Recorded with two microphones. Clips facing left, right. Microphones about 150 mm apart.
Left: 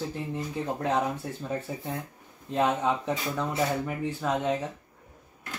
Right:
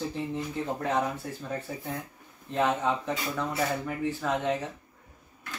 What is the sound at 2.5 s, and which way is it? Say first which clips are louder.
Speech: left 1 dB; 15° left (ahead or behind).